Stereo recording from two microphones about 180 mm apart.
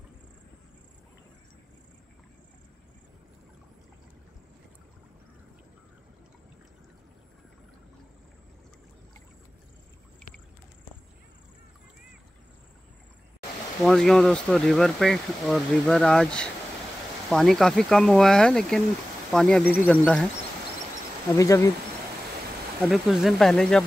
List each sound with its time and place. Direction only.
13.8 s speech: centre (ahead or behind)
21.4 s insect: 15° left (ahead or behind)
22.8 s speech: centre (ahead or behind)